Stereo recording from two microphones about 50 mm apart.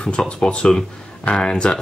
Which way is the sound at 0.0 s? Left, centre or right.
Centre.